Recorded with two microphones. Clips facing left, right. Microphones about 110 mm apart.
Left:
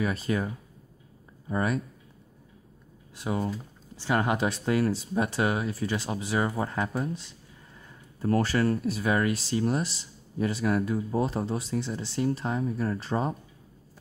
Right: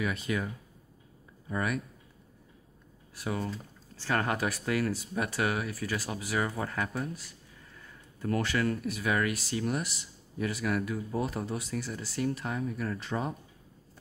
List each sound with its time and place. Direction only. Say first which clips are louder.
0.0 s speech: left 4 dB; 35° left (ahead or behind)
1.5 s speech: left 4 dB; 30° left (ahead or behind)
3.2 s speech: left 4 dB; 25° left (ahead or behind)